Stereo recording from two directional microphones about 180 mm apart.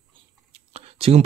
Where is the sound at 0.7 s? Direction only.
35° right (ahead or behind).